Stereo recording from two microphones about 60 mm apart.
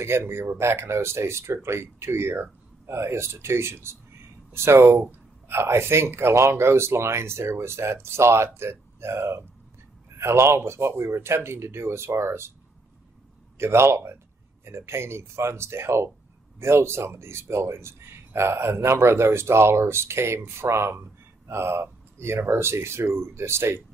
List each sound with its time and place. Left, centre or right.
0.0 s speech: right
13.6 s speech: right